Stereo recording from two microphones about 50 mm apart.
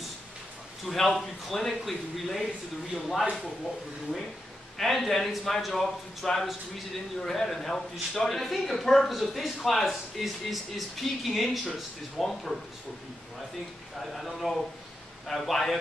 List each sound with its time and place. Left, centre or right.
0.8 s a man's voice: centre
4.7 s a man's voice: centre
13.9 s a man's voice: centre